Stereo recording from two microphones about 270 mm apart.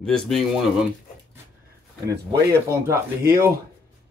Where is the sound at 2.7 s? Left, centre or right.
Centre.